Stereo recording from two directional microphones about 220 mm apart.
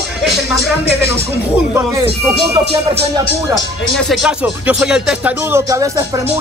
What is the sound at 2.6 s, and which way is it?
Music, 25° right (ahead or behind).